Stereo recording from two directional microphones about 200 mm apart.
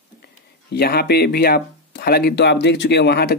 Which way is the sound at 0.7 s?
50° left (ahead or behind).